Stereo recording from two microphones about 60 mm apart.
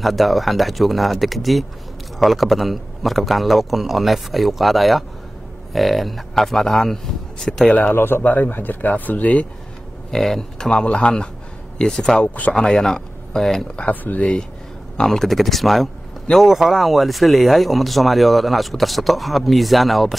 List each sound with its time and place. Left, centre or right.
0.0 s speech: centre
7.9 s speech: left
10.1 s speech: centre
12.2 s speech: left
12.5 s speech: centre
13.7 s speech: left
15.0 s speech: centre